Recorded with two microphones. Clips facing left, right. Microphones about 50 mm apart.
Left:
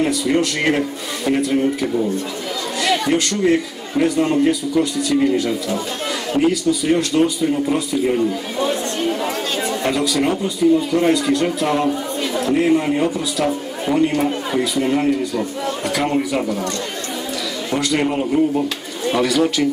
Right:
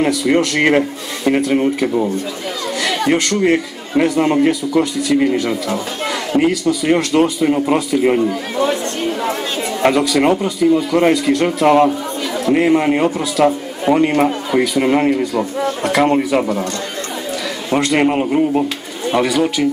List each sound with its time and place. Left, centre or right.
0.0 s a man's voice: right
9.8 s a man's voice: right
17.6 s a man's voice: right
19.0 s speech: centre